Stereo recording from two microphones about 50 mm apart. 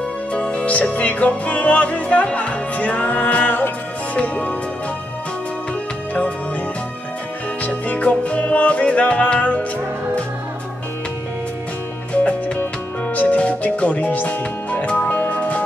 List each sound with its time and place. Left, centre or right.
0.3 s music: left
7.6 s music: left
12.1 s music: left